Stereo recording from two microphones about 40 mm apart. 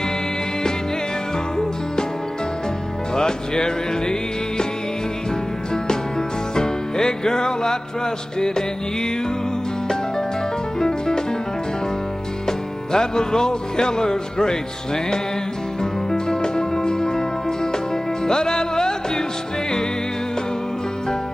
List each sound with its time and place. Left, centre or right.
3.2 s music: centre
6.5 s music: centre
10.8 s music: centre
12.4 s music: centre
15.8 s music: centre
18.2 s music: centre